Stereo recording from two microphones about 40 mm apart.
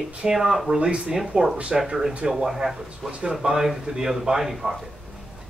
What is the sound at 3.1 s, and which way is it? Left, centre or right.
A man's voice, right.